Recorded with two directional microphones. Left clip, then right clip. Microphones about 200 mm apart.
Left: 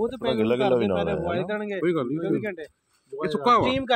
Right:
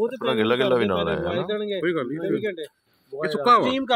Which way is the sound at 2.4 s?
45° right (ahead or behind).